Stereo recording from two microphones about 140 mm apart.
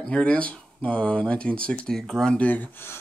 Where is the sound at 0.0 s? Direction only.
10° left (ahead or behind).